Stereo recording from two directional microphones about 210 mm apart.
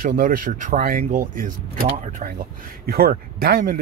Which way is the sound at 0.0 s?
45° right (ahead or behind).